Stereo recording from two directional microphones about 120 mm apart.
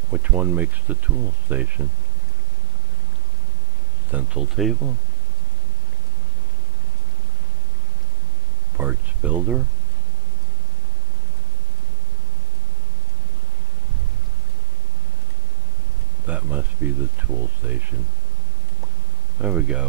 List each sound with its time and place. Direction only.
0.1 s speech: 15° right (ahead or behind)
4.1 s speech: 10° right (ahead or behind)
8.7 s speech: 15° right (ahead or behind)
16.3 s a sound: 15° right (ahead or behind)
17.6 s speech: 15° right (ahead or behind)
19.4 s speech: 10° right (ahead or behind)